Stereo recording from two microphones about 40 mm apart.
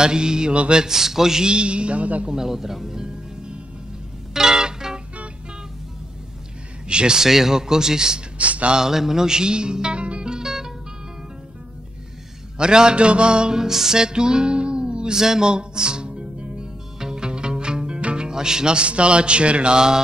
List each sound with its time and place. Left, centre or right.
0.0 s music: centre
0.8 s speech: centre
1.5 s music: right
2.2 s music: centre
6.9 s a man's voice: right
7.2 s speech: centre
8.4 s a sound: right
8.7 s music: centre; by 10.3 s right
10.3 s music: centre
12.5 s music: right